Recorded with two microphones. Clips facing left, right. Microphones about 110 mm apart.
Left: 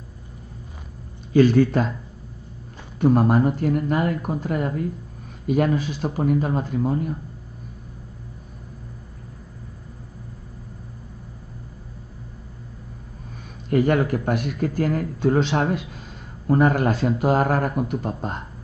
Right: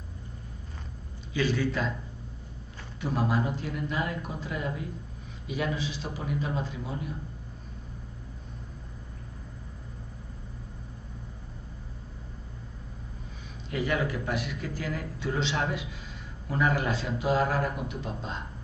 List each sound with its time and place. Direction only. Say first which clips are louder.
1.3 s speech: left 12 dB; 45° left (ahead or behind)
3.0 s speech: left 11 dB; 50° left (ahead or behind)
13.7 s speech: left 10 dB; 50° left (ahead or behind)